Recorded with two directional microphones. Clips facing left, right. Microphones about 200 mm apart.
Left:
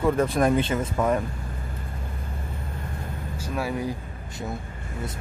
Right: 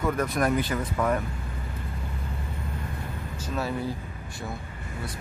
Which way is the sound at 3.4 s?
10° left (ahead or behind).